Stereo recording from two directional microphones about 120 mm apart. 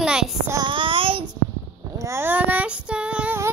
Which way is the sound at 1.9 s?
25° right (ahead or behind).